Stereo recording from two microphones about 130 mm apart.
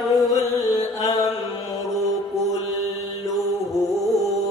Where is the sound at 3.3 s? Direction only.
Centre (ahead or behind).